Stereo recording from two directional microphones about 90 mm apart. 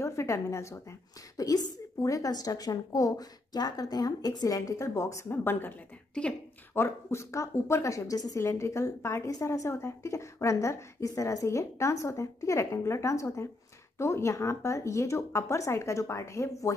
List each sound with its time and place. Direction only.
0.0 s a woman's voice: 30° left (ahead or behind); by 6.3 s 15° left (ahead or behind)
6.7 s a woman's voice: 30° left (ahead or behind)
8.4 s a woman's voice: 30° left (ahead or behind)